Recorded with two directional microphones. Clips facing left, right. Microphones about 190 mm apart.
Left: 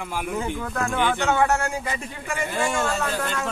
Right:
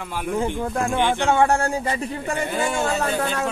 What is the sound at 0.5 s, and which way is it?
Speech, 30° right (ahead or behind).